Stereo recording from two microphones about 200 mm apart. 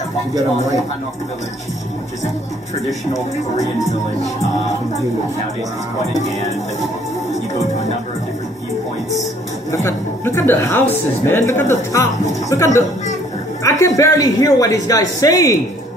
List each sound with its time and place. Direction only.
9.7 s a woman's voice: 15° left (ahead or behind)